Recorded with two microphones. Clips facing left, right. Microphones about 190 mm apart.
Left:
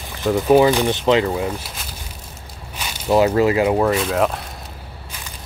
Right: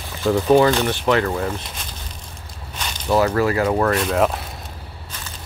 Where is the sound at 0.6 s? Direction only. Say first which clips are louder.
Left 2 dB; 15° left (ahead or behind).